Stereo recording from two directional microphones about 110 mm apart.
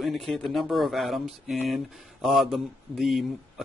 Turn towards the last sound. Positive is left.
turn(degrees=0)  # may be behind; listen again after turning